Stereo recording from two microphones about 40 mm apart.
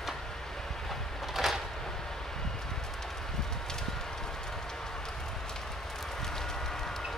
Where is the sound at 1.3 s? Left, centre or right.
Centre.